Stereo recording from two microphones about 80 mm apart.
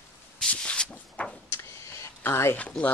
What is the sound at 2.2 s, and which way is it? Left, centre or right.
Speech, left.